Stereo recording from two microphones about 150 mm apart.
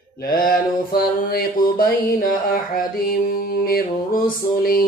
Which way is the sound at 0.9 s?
90° left.